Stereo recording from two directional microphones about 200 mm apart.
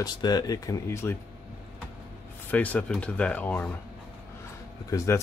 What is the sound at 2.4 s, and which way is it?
Speech, 5° left (ahead or behind).